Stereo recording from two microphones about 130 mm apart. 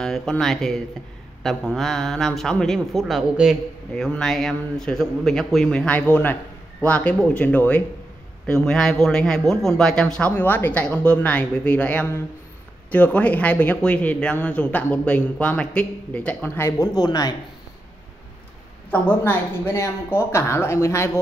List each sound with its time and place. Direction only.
0.0 s a man's voice: 5° left (ahead or behind); by 17.4 s 30° left (ahead or behind)
18.9 s speech: 15° left (ahead or behind)